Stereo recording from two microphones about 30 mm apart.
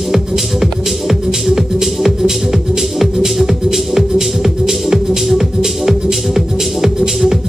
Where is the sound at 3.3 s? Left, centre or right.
Centre.